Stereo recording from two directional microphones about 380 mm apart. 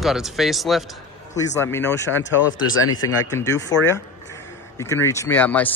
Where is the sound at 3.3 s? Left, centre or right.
Centre.